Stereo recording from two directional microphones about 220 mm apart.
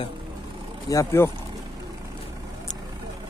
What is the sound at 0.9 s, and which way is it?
Speech, 10° left (ahead or behind).